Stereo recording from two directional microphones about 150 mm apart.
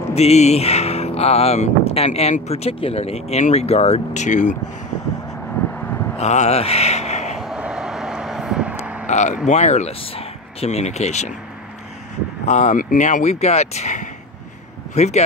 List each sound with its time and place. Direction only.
0.1 s speech: 45° left (ahead or behind)
6.1 s speech: 50° left (ahead or behind)
7.3 s vehicle: 5° right (ahead or behind)
9.0 s speech: 50° left (ahead or behind)
12.4 s speech: 50° left (ahead or behind)